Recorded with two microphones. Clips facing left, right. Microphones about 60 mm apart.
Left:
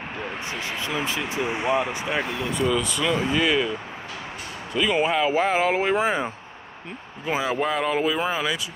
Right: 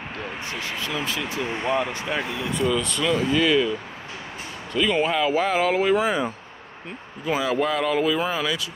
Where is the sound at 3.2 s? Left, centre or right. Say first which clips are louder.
Right 3 dB; centre.